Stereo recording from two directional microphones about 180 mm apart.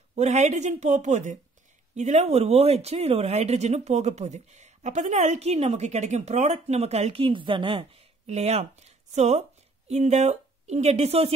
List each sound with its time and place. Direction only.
0.1 s speech: 40° right (ahead or behind)